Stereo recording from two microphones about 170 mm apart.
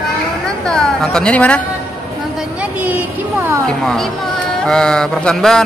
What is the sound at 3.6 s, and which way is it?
A man's voice, 5° left (ahead or behind).